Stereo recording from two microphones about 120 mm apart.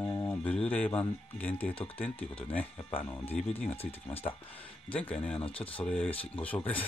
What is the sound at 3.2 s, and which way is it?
Speech, 55° left (ahead or behind).